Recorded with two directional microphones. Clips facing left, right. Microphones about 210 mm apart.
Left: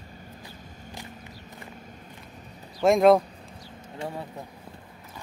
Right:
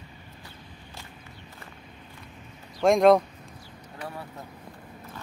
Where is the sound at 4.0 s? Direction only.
25° left (ahead or behind).